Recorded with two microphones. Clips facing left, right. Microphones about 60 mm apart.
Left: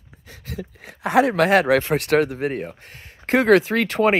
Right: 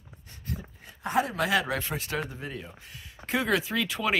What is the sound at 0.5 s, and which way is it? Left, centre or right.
Speech, left.